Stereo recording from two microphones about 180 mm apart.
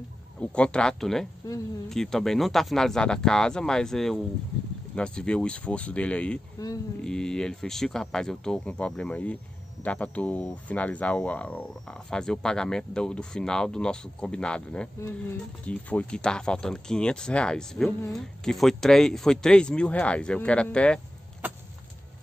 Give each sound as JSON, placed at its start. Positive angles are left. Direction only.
{"t": 0.4, "sound": "speech", "side_deg": 5}
{"t": 1.4, "sound": "speech", "side_deg": 20}
{"t": 1.9, "sound": "speech", "side_deg": 0}